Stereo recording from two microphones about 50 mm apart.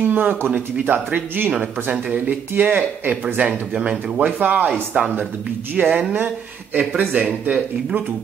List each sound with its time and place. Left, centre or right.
0.1 s speech: right
1.5 s speech: right
3.7 s speech: centre
4.2 s speech: right